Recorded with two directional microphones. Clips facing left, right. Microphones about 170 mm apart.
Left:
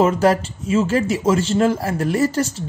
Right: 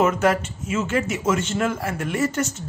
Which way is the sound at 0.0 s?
30° left (ahead or behind).